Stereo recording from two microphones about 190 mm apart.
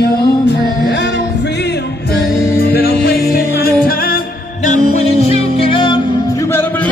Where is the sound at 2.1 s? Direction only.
55° left (ahead or behind); by 6.0 s 25° left (ahead or behind).